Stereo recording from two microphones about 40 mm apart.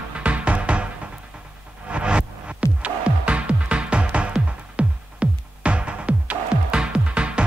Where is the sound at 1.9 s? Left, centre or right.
Right.